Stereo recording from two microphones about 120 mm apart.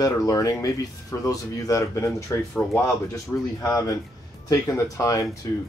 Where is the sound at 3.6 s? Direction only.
30° left (ahead or behind).